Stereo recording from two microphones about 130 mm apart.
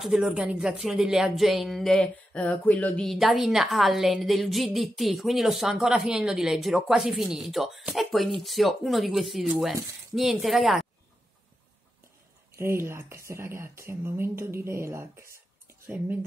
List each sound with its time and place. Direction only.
0.0 s a woman's voice: 5° right (ahead or behind); by 3.1 s 10° left (ahead or behind)
3.1 s a woman's voice: centre (ahead or behind)
12.5 s speech: 20° right (ahead or behind)